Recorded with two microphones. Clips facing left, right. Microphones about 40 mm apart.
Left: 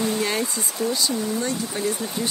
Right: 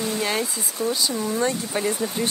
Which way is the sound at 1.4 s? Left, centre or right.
Right.